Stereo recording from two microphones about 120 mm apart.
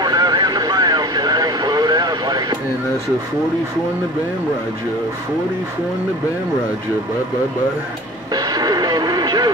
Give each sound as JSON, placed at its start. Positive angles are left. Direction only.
{"t": 0.0, "sound": "vehicle", "side_deg": -35}
{"t": 8.3, "sound": "radio", "side_deg": -35}